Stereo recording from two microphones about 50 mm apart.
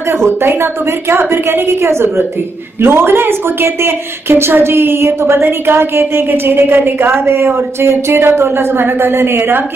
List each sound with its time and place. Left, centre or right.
0.1 s a woman's voice: right
2.8 s speech: right